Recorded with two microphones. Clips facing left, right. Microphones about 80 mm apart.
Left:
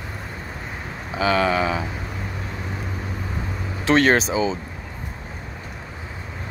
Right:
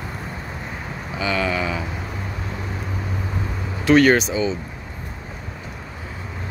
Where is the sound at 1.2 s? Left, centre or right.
Left.